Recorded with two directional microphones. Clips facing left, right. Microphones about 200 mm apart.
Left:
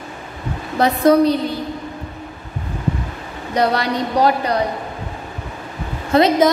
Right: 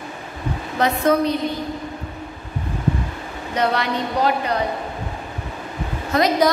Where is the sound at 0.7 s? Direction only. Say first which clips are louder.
Left 5 dB; 35° left (ahead or behind).